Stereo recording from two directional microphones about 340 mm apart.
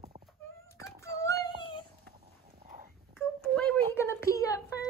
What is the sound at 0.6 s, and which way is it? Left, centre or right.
Child singing, centre.